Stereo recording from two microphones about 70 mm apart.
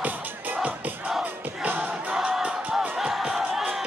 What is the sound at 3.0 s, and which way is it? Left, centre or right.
Music, centre.